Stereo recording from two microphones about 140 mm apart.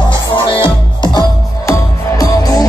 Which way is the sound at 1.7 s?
25° left (ahead or behind).